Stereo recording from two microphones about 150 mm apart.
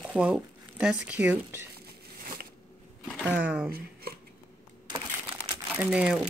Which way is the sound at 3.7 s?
90° right.